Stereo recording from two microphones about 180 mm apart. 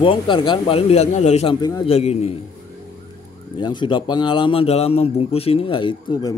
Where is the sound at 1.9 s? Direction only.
35° left (ahead or behind).